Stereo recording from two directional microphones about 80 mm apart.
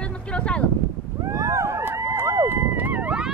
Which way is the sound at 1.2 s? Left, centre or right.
Right.